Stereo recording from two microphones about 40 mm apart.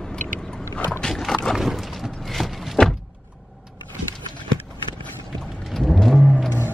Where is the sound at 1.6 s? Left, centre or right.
Centre.